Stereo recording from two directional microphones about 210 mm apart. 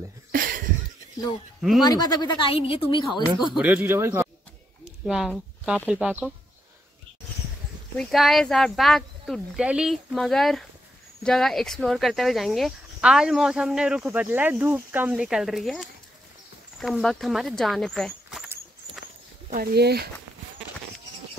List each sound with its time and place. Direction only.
0.3 s a sound: 40° right (ahead or behind)
1.8 s speech: 20° left (ahead or behind)
3.5 s speech: 5° right (ahead or behind)
8.0 s speech: centre (ahead or behind)
19.5 s speech: 45° right (ahead or behind)